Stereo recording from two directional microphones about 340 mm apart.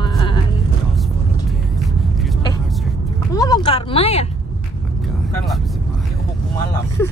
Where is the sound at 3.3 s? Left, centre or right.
Centre.